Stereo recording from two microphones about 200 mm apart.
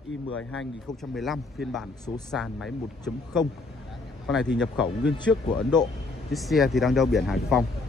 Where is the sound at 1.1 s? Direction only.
Centre (ahead or behind).